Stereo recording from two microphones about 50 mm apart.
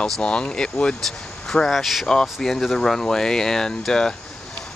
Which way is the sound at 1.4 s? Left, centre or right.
Centre.